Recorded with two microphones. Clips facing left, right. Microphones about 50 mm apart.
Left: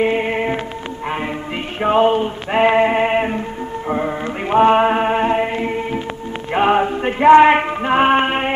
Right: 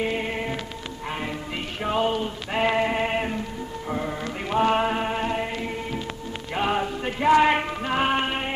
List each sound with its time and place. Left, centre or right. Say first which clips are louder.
0.0 s music: left 9 dB; left
1.8 s music: left 10 dB; left
6.5 s a sound: left 10 dB; left